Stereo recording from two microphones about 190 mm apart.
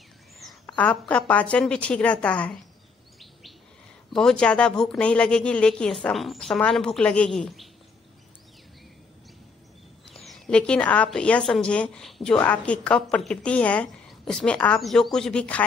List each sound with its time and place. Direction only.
0.5 s a woman's voice: 5° left (ahead or behind)
4.1 s speech: 5° left (ahead or behind)
10.0 s speech: centre (ahead or behind)